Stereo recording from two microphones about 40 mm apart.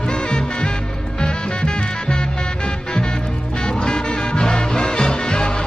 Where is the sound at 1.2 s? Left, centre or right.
Left.